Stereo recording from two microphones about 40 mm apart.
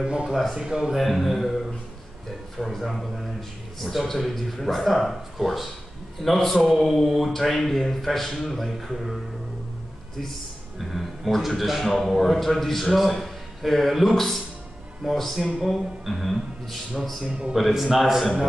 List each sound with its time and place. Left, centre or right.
0.3 s a man's voice: centre
0.6 s speech: right
0.9 s a man's voice: centre
10.8 s a man's voice: centre
17.6 s a man's voice: centre